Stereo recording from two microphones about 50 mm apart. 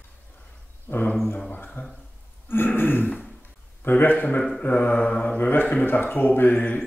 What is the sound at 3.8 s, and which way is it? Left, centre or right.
Speech, left.